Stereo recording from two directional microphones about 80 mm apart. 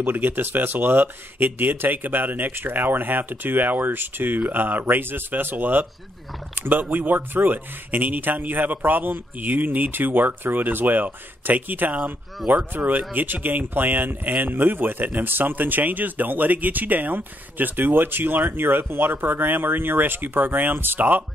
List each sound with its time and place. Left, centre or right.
0.0 s speech: right